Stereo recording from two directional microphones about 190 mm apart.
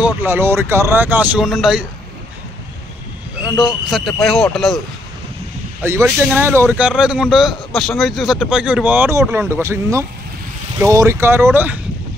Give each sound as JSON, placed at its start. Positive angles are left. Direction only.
{"t": 0.0, "sound": "speech", "side_deg": -10}
{"t": 3.4, "sound": "speech", "side_deg": -5}
{"t": 5.8, "sound": "speech", "side_deg": -10}